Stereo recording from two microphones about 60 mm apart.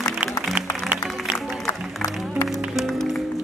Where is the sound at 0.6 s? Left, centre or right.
Right.